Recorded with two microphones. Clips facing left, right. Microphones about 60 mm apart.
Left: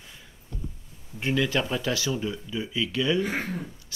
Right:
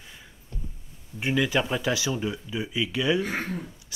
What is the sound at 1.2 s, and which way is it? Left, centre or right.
Speech, centre.